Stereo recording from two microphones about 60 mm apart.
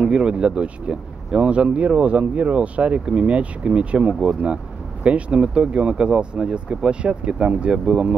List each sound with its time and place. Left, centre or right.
0.0 s speech: centre